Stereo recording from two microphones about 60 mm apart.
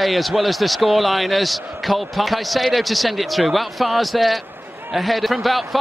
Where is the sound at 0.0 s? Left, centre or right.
Centre.